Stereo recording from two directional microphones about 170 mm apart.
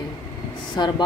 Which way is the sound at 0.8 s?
25° left (ahead or behind).